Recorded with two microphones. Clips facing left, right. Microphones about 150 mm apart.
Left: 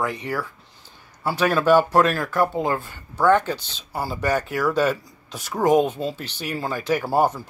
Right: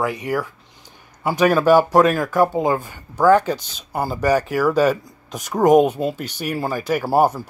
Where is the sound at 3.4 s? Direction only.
40° right (ahead or behind).